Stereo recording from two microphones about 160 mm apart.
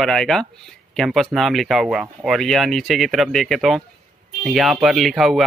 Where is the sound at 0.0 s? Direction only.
5° left (ahead or behind).